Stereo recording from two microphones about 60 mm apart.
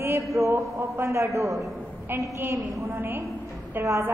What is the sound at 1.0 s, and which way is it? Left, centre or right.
Speech, right.